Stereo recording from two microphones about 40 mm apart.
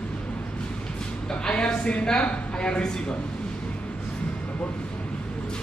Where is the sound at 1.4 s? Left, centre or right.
Left.